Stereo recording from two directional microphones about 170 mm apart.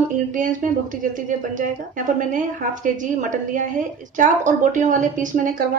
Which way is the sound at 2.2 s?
50° right (ahead or behind).